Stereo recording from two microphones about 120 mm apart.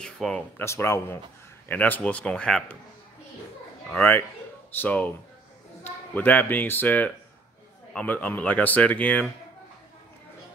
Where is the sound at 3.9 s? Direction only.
15° left (ahead or behind).